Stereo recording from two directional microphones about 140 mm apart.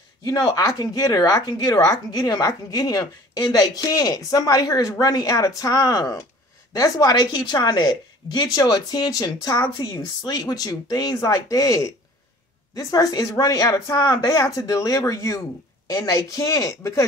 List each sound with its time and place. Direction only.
0.3 s speech: 30° left (ahead or behind)